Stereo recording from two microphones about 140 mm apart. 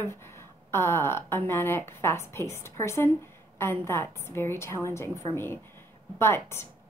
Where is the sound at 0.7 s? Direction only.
15° left (ahead or behind).